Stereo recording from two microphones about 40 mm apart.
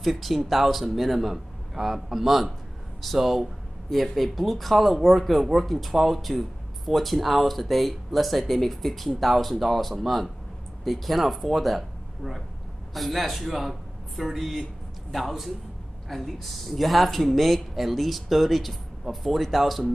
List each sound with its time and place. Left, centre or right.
0.0 s speech: centre